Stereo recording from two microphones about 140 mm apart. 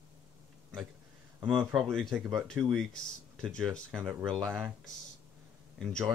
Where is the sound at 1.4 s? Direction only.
Centre (ahead or behind).